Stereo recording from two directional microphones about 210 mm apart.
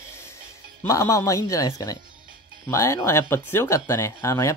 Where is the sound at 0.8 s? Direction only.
15° left (ahead or behind).